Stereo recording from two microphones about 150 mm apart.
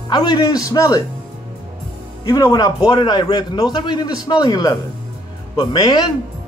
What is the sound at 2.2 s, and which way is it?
A man's voice, 25° left (ahead or behind).